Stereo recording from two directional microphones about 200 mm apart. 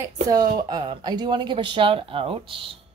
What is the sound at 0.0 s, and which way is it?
A woman's voice, 20° right (ahead or behind).